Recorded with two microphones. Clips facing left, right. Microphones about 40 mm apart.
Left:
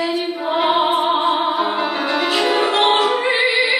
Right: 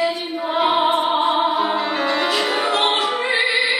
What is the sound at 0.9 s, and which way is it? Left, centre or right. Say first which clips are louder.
Music: left 1 dB; left.